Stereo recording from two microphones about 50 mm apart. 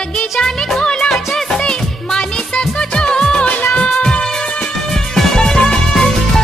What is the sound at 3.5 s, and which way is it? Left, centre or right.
Music of bollywood, left.